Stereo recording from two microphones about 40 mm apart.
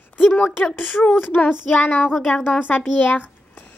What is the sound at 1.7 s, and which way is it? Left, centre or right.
A child's voice, left.